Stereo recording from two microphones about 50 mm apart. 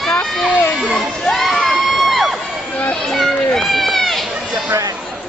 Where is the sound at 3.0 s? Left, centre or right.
Centre.